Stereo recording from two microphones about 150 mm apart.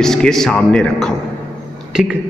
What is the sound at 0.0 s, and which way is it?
Speech, 5° left (ahead or behind).